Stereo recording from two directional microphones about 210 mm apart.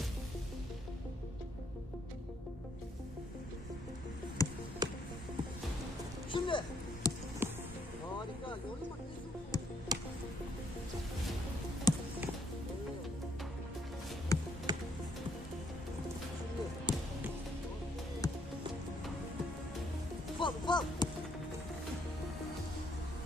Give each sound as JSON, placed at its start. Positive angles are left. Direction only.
{"t": 4.4, "sound": "music", "side_deg": 15}
{"t": 4.8, "sound": "music", "side_deg": -20}
{"t": 6.3, "sound": "music", "side_deg": 25}
{"t": 7.4, "sound": "music", "side_deg": -10}
{"t": 9.9, "sound": "music", "side_deg": -20}
{"t": 11.9, "sound": "music", "side_deg": 20}
{"t": 14.3, "sound": "music", "side_deg": 15}
{"t": 14.7, "sound": "music", "side_deg": -20}
{"t": 16.9, "sound": "basketball bounce", "side_deg": 20}
{"t": 18.2, "sound": "music", "side_deg": 15}
{"t": 20.3, "sound": "music", "side_deg": 20}